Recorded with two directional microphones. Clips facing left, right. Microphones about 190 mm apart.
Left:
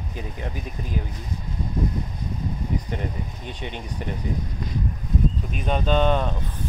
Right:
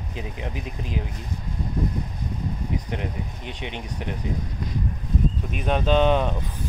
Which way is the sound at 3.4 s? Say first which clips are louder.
Even; 20° right (ahead or behind).